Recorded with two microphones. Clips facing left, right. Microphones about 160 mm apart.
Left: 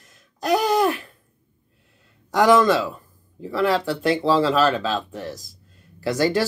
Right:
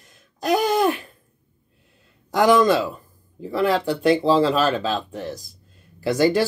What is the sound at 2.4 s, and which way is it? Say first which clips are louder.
Speech: even; 15° right (ahead or behind).